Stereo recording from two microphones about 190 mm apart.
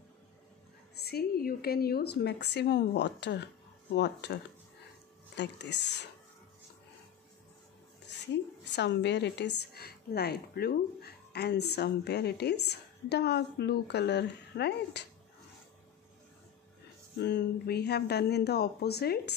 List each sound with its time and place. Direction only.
1.0 s a woman's voice: 55° left (ahead or behind)
8.6 s a woman's voice: 65° left (ahead or behind)
17.2 s a woman's voice: 60° left (ahead or behind)